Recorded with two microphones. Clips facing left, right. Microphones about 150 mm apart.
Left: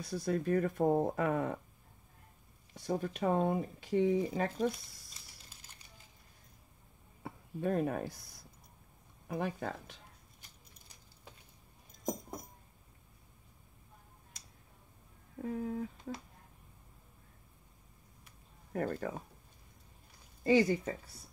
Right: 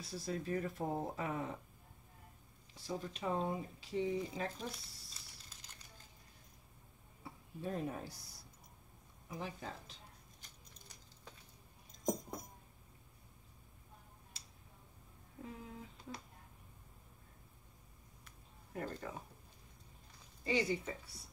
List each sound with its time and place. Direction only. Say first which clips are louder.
0.0 s speech: left 8 dB; 55° left (ahead or behind)
2.7 s speech: left 7 dB; 55° left (ahead or behind)
7.2 s speech: left 8 dB; 60° left (ahead or behind)
15.4 s speech: left 13 dB; 50° left (ahead or behind)
18.7 s speech: left 8 dB; 55° left (ahead or behind)
20.4 s speech: left 8 dB; 50° left (ahead or behind)